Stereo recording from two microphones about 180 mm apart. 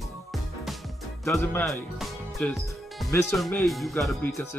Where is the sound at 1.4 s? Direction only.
15° left (ahead or behind).